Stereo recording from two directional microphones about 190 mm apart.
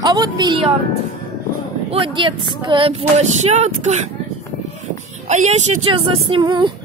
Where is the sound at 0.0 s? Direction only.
20° right (ahead or behind).